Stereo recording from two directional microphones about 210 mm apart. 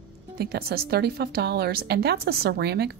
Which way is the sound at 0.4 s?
50° right (ahead or behind).